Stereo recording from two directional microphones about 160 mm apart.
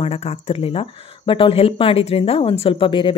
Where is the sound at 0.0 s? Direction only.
40° left (ahead or behind).